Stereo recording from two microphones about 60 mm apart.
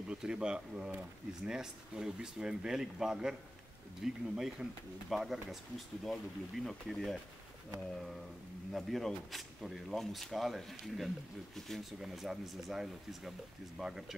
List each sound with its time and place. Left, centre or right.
0.1 s speech: centre
8.7 s speech: centre